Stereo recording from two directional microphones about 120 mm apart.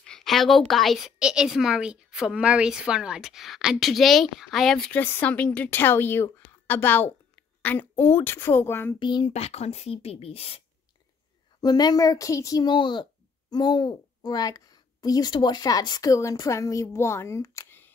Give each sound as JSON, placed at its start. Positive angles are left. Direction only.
{"t": 0.0, "sound": "a woman's voice", "side_deg": 5}
{"t": 4.9, "sound": "a woman's voice", "side_deg": 15}
{"t": 9.0, "sound": "speech", "side_deg": 40}
{"t": 9.3, "sound": "speech", "side_deg": 65}
{"t": 11.6, "sound": "speech", "side_deg": 35}